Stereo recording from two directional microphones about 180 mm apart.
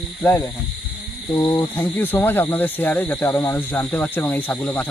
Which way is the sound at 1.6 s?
10° left (ahead or behind).